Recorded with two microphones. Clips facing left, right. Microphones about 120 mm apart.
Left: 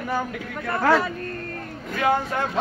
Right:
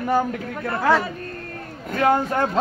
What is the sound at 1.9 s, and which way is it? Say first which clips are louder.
Speech: right 3 dB; 40° right (ahead or behind).